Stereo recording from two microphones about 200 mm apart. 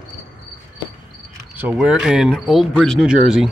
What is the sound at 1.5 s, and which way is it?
Speech, 5° right (ahead or behind).